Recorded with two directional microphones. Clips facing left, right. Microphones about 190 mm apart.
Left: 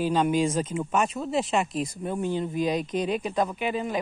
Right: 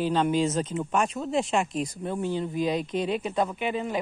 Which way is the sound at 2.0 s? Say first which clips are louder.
Left 1 dB; 15° left (ahead or behind).